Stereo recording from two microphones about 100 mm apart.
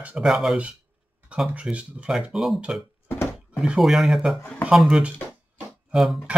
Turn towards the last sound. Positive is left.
turn(degrees=-5)  # may be behind; listen again after turning